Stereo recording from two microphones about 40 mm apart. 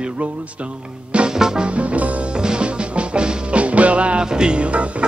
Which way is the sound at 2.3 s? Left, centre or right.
Right.